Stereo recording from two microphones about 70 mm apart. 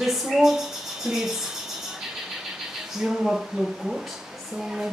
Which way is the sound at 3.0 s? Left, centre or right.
Centre.